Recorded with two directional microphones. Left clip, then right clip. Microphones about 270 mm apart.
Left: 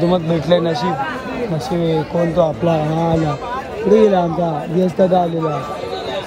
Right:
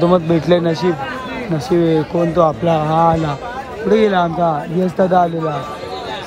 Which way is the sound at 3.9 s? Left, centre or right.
Centre.